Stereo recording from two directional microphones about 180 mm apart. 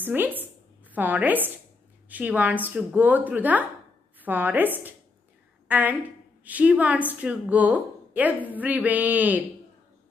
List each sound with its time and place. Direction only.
0.0 s a woman's voice: 10° right (ahead or behind)